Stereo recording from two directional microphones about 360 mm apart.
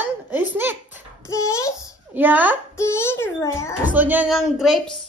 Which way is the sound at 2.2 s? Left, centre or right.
Centre.